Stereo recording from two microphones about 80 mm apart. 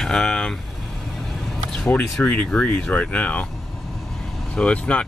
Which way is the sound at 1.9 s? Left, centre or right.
Left.